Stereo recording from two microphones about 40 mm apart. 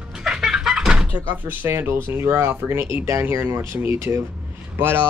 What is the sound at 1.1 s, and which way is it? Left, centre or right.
Speech, right.